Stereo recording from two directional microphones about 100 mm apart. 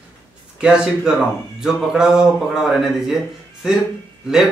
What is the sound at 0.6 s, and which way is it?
A man's voice, 10° right (ahead or behind).